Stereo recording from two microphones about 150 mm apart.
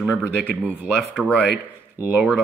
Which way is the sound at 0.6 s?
5° right (ahead or behind).